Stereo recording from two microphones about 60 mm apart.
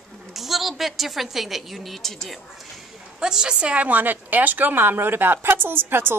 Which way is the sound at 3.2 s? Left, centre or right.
Centre.